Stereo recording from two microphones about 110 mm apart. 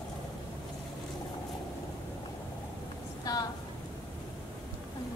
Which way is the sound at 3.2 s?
35° left (ahead or behind).